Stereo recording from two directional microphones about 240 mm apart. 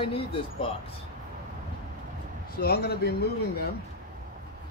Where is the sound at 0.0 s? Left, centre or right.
Left.